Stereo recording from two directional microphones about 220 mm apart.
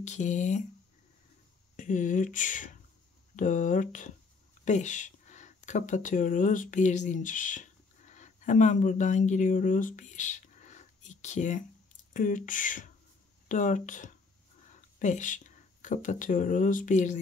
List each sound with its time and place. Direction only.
0.0 s speech: 30° left (ahead or behind)
1.8 s speech: 35° left (ahead or behind)